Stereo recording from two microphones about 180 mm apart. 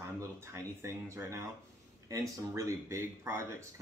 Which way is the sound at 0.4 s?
15° right (ahead or behind).